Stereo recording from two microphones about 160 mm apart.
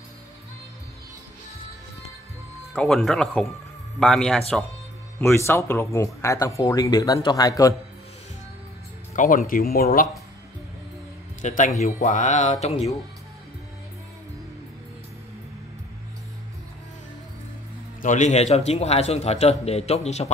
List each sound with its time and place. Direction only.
2.7 s speech: 5° left (ahead or behind)
5.2 s speech: 15° left (ahead or behind)
9.1 s speech: 55° left (ahead or behind)
11.4 s music: 50° left (ahead or behind)
18.0 s a man's voice: 50° left (ahead or behind)